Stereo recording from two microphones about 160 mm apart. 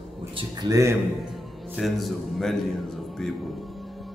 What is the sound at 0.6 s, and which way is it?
Speech, 20° right (ahead or behind).